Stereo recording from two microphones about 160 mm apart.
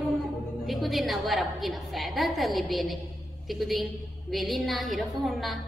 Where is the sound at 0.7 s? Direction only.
Centre (ahead or behind).